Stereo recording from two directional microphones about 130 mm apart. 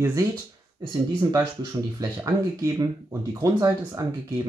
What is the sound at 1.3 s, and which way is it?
Speech, 30° right (ahead or behind).